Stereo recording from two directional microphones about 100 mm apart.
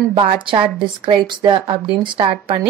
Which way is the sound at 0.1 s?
55° right (ahead or behind).